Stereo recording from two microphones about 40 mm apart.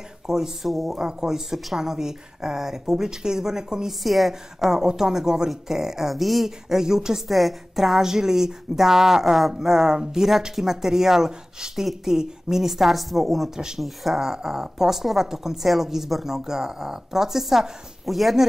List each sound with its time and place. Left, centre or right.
0.3 s speech: centre
4.0 s speech: centre
7.2 s speech: centre